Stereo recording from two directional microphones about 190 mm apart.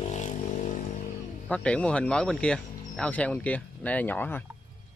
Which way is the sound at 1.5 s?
5° left (ahead or behind).